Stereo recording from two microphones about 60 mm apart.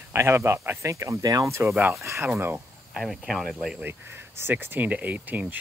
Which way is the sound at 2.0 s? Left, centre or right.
Right.